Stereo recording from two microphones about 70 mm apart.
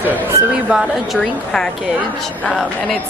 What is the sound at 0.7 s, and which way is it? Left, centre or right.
Speech, centre.